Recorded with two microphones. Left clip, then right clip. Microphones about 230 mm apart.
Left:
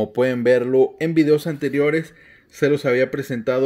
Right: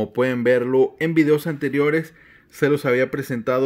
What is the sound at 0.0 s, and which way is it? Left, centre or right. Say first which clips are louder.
A man's voice: left 1 dB; centre.